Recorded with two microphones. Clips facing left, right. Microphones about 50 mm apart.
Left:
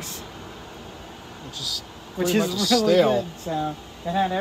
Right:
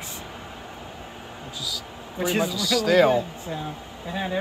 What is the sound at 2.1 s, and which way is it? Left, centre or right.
Speech, centre.